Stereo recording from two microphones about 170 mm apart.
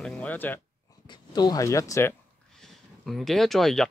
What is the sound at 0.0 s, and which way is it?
Speech, 5° left (ahead or behind).